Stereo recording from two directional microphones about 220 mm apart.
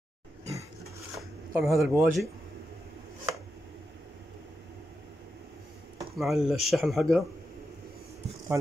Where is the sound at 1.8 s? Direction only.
Centre (ahead or behind).